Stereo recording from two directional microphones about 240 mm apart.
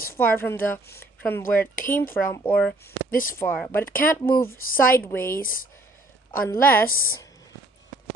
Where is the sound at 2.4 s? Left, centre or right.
Centre.